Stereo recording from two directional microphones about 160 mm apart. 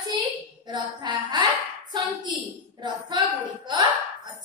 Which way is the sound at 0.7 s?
25° right (ahead or behind).